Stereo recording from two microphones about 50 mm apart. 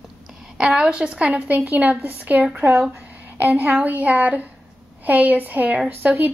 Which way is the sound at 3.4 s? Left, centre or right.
Right.